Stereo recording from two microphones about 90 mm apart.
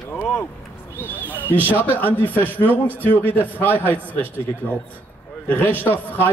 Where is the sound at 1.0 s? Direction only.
20° right (ahead or behind).